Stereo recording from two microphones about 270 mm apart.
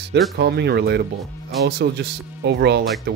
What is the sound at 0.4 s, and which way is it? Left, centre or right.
Speech, right.